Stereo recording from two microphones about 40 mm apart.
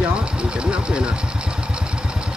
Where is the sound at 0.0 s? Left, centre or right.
Right.